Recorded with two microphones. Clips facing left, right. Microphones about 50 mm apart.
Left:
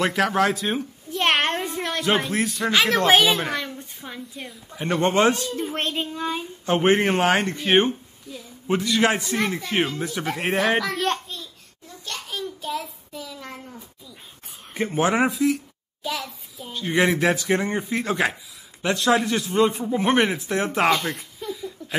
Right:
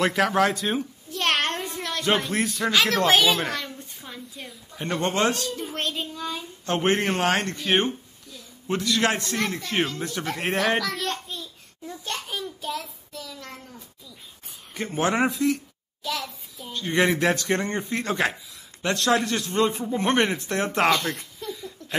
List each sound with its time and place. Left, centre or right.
0.0 s speech: centre
1.1 s child singing: left
2.0 s speech: centre
2.7 s a man's voice: centre
3.3 s a sound: centre
4.4 s a sound: centre
5.0 s speech: centre
5.6 s child singing: left
6.6 s a man's voice: centre
7.5 s a man's voice: left; by 11.0 s centre
12.1 s child singing: right
12.6 s child singing: centre
13.1 s a sound: centre
14.9 s a child's voice: centre